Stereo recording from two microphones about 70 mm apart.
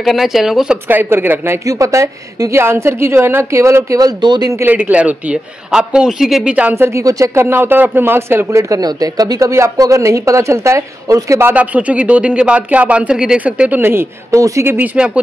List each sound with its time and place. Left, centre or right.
0.0 s speech: centre
0.8 s speech: right
1.7 s a woman's voice: right
4.0 s a man's voice: right
4.6 s a man's voice: right; by 6.5 s centre
6.7 s a woman's voice: right
7.1 s a woman's voice: right
7.4 s a woman's voice: right
8.5 s a woman's voice: right
8.8 s a woman's voice: right
11.5 s speech: right
13.7 s speech: right
14.3 s a woman's voice: right
15.0 s a man's voice: centre